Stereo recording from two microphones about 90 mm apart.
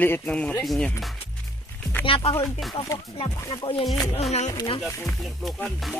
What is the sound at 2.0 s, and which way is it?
Speech, 80° left.